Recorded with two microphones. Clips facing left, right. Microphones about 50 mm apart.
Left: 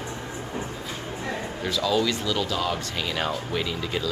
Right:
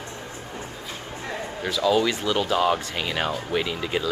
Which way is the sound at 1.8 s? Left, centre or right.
Right.